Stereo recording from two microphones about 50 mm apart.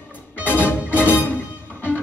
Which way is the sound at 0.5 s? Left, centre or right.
Left.